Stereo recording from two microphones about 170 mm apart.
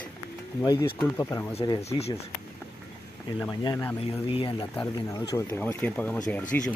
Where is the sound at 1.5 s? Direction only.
35° left (ahead or behind).